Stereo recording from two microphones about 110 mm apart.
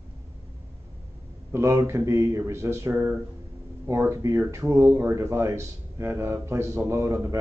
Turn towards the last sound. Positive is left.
turn(degrees=-25)  # may be behind; listen again after turning